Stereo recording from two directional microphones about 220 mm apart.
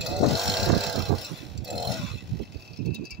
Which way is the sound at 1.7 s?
50° right (ahead or behind).